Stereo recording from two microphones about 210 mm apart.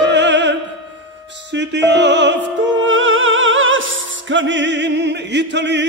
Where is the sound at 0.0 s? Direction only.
55° right (ahead or behind).